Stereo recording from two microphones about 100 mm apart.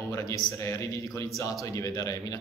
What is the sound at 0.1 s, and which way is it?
A man's voice, 30° left (ahead or behind).